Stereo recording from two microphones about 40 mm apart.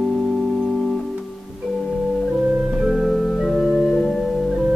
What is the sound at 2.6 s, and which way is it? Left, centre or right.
Music, centre.